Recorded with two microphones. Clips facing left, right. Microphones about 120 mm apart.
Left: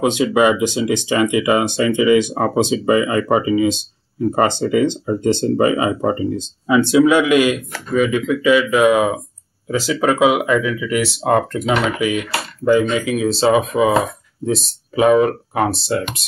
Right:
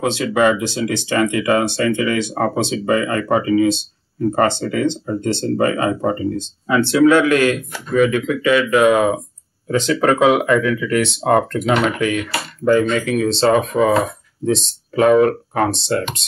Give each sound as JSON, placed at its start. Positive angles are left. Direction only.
{"t": 0.0, "sound": "speech", "side_deg": 15}